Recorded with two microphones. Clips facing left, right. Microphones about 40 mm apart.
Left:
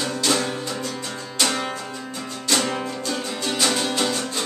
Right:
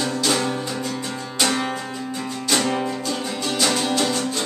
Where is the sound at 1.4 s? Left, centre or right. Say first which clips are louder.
Right 2 dB; centre.